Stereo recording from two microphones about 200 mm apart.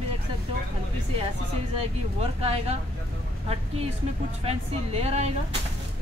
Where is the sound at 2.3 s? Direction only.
30° right (ahead or behind).